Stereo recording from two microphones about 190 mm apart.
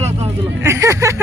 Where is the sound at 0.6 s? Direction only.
15° right (ahead or behind).